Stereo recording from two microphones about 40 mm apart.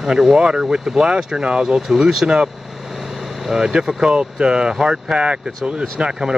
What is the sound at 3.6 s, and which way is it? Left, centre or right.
Speech, centre.